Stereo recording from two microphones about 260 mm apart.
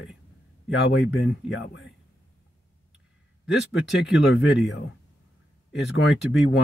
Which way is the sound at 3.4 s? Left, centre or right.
Left.